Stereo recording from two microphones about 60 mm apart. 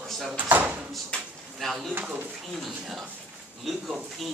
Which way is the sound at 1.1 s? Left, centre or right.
Centre.